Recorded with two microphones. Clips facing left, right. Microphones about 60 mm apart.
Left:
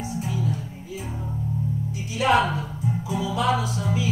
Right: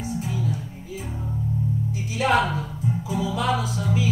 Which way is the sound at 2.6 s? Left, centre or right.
Centre.